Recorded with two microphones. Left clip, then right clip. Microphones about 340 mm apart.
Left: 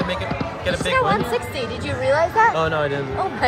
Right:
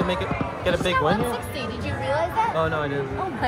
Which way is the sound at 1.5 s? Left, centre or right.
Centre.